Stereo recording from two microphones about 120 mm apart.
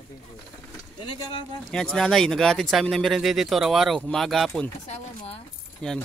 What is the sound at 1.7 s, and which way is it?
Speech, 5° left (ahead or behind).